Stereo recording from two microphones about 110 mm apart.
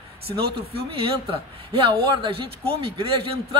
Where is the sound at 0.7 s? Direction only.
60° right (ahead or behind).